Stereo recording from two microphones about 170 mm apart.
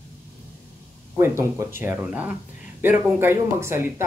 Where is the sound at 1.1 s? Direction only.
15° right (ahead or behind).